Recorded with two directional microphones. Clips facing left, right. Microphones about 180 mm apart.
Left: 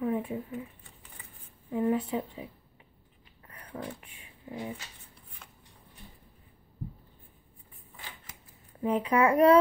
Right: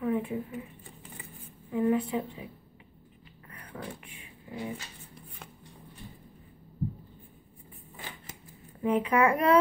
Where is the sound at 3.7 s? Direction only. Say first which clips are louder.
Left 2 dB; 25° left (ahead or behind).